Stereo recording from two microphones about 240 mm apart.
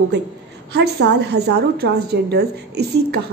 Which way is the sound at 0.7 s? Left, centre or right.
Right.